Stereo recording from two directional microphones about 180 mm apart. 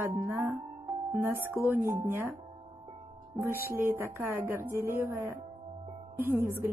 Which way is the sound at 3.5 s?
55° right (ahead or behind).